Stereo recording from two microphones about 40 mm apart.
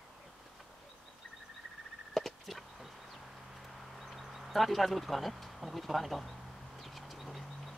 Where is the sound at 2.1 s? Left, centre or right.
Centre.